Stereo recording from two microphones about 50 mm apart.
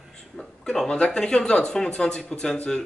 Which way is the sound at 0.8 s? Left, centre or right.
Centre.